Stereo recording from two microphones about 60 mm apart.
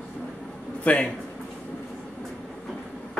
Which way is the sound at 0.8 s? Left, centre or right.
Left.